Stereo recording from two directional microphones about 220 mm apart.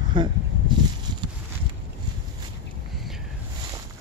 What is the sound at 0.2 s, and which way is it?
Speech, 20° right (ahead or behind).